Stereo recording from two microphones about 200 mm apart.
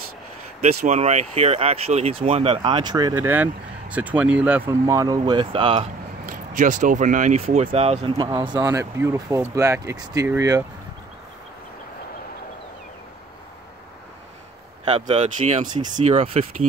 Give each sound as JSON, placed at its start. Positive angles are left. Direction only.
{"t": 0.6, "sound": "speech", "side_deg": -35}
{"t": 6.2, "sound": "speech", "side_deg": -45}
{"t": 14.9, "sound": "speech", "side_deg": -35}